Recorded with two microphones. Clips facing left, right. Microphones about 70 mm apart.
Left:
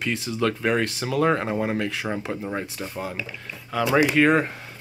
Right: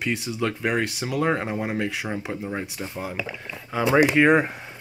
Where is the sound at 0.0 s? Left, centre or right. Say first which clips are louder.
Left 1 dB; centre.